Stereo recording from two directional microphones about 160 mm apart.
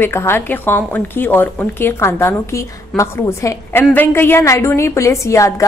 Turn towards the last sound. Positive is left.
turn(degrees=20)  # may be behind; listen again after turning